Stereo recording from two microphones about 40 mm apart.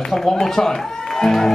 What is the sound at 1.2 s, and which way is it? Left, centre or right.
Music, centre.